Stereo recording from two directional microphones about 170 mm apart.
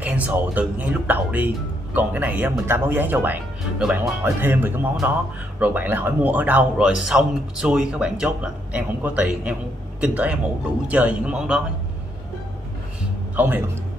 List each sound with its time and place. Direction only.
0.0 s speech: 10° right (ahead or behind)